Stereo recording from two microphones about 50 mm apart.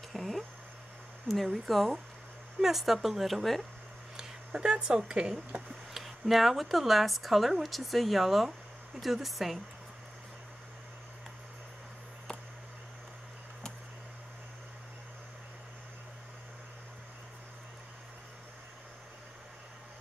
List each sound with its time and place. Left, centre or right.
0.1 s a sound: centre
1.2 s speech: centre
4.5 s speech: centre
5.9 s speech: centre